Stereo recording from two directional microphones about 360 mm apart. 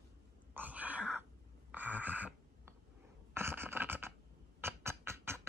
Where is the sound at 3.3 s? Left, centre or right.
Centre.